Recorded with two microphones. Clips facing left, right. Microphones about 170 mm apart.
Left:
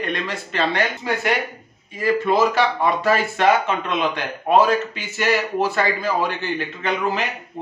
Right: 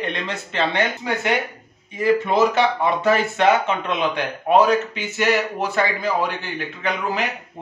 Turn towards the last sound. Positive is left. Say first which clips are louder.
# left 1 dB
turn(degrees=-15)  # may be behind; listen again after turning